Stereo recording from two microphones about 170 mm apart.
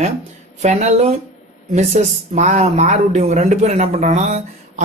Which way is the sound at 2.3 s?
45° right (ahead or behind).